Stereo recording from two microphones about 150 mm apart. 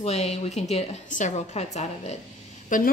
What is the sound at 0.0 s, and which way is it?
Speech, 45° left (ahead or behind).